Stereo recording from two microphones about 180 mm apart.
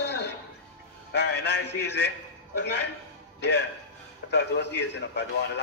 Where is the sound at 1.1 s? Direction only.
70° left (ahead or behind).